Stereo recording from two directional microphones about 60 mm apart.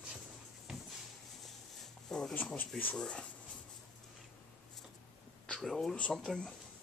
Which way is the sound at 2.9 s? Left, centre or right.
Centre.